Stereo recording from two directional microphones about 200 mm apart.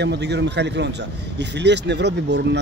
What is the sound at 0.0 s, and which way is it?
A man's voice, 60° right (ahead or behind).